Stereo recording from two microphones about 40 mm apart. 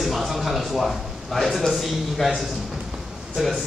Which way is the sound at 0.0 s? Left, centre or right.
Centre.